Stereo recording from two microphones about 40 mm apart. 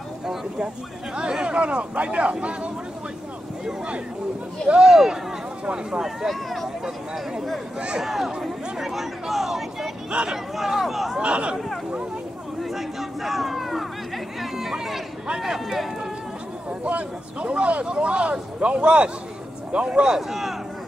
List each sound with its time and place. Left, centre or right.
1.1 s speech: right
4.8 s speech: centre
6.2 s speech: centre
8.0 s speech: centre
11.1 s speech: right
12.6 s speech: centre
14.4 s chatter: centre
15.4 s speech: centre
16.8 s speech: right
20.2 s speech: centre